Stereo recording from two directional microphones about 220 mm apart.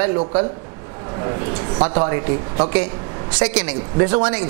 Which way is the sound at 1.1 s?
20° right (ahead or behind).